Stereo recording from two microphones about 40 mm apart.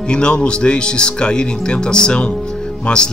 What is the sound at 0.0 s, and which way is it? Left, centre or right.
Speech, left.